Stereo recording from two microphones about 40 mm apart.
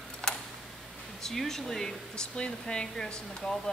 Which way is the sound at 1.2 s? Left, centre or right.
Centre.